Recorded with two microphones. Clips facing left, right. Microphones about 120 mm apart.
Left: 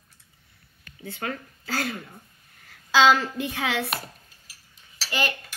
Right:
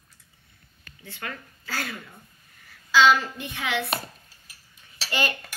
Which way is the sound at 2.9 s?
90° left.